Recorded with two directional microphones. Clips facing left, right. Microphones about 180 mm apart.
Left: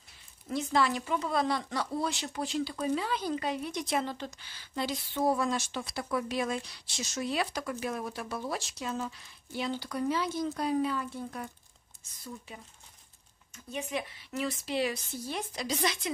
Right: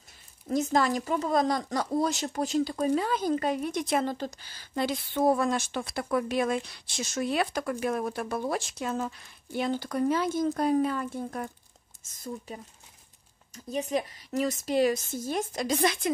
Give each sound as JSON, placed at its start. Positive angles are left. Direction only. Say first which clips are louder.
{"t": 0.5, "sound": "speech", "louder": "right 3 dB", "side_deg": -45}